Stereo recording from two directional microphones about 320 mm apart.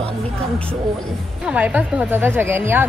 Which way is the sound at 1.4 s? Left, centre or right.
Centre.